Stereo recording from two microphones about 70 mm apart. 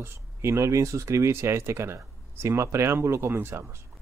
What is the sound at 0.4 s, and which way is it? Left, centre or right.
Speech, right.